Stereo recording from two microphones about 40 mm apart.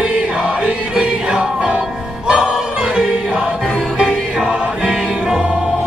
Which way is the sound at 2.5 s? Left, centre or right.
Right.